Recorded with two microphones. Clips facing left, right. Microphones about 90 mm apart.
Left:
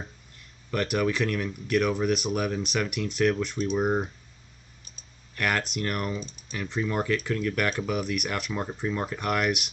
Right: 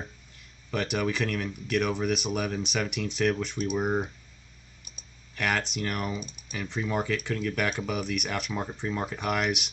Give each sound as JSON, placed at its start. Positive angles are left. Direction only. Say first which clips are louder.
{"t": 0.4, "sound": "a sound", "louder": "left 2 dB", "side_deg": 0}
{"t": 0.9, "sound": "speech", "louder": "left 3 dB", "side_deg": 0}
{"t": 4.9, "sound": "clicking", "louder": "right 3 dB", "side_deg": -15}
{"t": 5.3, "sound": "speech", "louder": "left 1 dB", "side_deg": 0}
{"t": 6.1, "sound": "speech", "louder": "left 1 dB", "side_deg": -15}
{"t": 6.6, "sound": "speech", "louder": "left 1 dB", "side_deg": 0}